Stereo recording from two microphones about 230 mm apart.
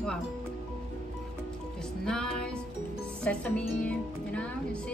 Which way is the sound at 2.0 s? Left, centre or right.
Centre.